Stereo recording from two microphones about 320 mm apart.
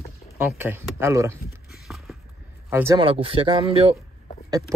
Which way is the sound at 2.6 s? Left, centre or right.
Centre.